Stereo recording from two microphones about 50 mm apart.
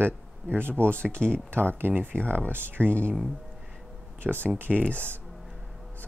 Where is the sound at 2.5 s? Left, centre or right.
Right.